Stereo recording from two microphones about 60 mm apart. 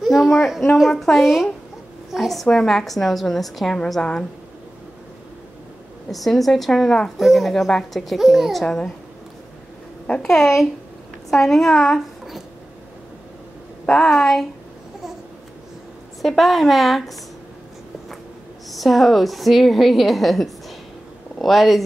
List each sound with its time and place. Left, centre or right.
0.0 s a woman's voice: centre
6.0 s a woman's voice: centre
8.6 s a child's voice: centre
10.2 s a child's voice: centre
13.9 s a woman's voice: centre
16.2 s a woman's voice: centre
18.7 s a woman's voice: centre